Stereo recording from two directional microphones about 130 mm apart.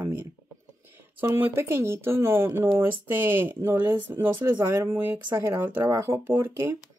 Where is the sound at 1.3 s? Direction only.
15° right (ahead or behind).